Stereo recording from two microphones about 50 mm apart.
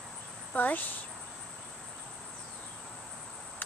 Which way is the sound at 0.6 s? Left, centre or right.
Left.